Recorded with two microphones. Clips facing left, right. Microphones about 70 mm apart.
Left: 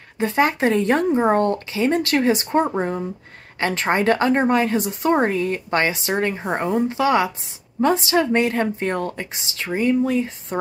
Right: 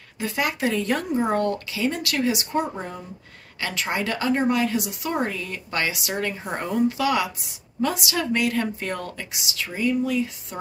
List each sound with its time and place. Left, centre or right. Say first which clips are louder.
0.2 s a woman's voice: left 6 dB; left